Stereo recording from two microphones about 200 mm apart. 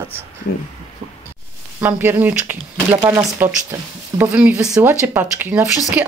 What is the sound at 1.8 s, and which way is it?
Speech, 10° right (ahead or behind).